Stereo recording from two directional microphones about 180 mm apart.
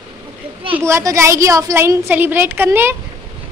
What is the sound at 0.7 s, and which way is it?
A woman's voice, 15° right (ahead or behind).